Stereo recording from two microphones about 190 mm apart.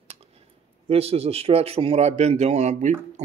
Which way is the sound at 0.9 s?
30° right (ahead or behind).